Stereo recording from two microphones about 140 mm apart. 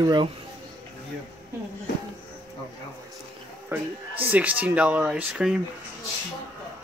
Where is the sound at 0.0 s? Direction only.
30° right (ahead or behind).